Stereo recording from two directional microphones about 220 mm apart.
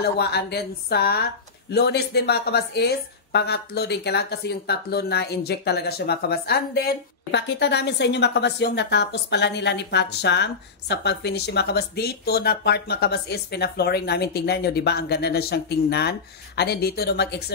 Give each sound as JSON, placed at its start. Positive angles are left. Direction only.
{"t": 0.0, "sound": "speech", "side_deg": 50}